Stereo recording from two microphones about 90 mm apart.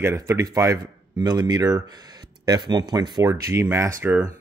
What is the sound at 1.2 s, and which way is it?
Speech, 50° right (ahead or behind).